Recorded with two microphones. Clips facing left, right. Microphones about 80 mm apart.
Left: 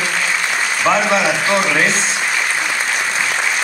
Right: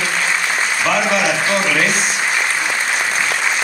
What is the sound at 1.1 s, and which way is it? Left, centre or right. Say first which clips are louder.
Speech: left 1 dB; left.